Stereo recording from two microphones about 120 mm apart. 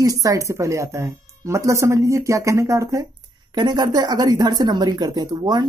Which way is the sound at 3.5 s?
40° right (ahead or behind).